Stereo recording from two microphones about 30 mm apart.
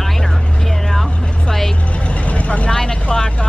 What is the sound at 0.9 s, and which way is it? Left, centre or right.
Speech, centre.